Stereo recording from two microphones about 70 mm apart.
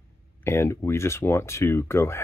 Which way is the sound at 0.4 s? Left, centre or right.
Left.